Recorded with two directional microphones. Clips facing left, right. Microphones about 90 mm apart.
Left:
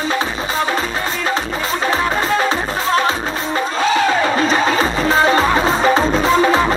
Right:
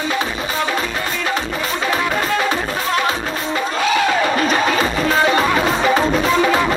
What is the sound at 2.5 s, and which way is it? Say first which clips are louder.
Music: left 2 dB; 30° left (ahead or behind).